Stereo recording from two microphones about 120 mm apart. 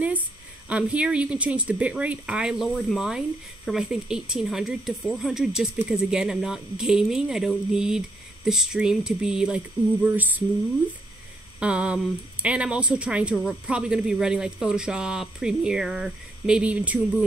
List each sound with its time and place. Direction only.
0.7 s speech: 10° right (ahead or behind)
11.6 s speech: 10° right (ahead or behind)